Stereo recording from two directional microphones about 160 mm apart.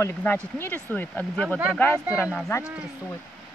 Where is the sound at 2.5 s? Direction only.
20° left (ahead or behind).